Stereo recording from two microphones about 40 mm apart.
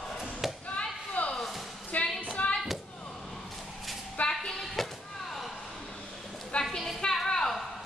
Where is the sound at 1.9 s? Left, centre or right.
Left.